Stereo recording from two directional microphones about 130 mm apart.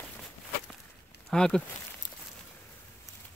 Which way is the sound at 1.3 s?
5° left (ahead or behind).